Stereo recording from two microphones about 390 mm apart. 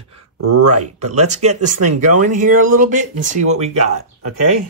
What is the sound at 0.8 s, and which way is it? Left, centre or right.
Speech, centre.